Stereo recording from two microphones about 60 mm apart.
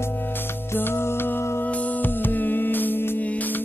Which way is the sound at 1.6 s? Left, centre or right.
Left.